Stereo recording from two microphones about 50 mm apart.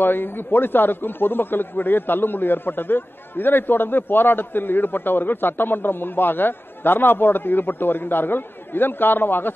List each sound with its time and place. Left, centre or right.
0.0 s a man's voice: left